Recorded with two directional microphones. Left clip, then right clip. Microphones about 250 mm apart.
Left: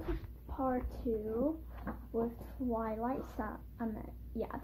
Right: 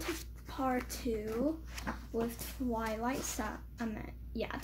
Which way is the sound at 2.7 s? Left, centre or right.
Centre.